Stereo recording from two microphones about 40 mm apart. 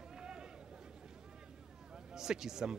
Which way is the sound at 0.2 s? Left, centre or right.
Right.